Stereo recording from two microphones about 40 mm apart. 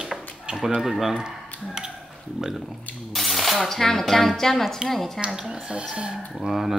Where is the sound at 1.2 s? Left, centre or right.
Centre.